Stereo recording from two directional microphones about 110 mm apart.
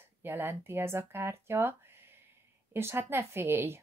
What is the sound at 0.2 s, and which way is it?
A woman's voice, 20° right (ahead or behind).